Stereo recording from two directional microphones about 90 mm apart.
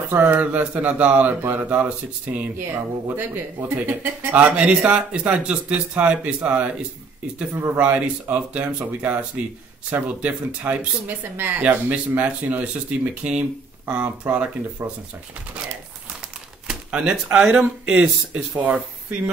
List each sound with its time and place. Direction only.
0.1 s speech: 20° right (ahead or behind)
16.6 s speech: 10° right (ahead or behind)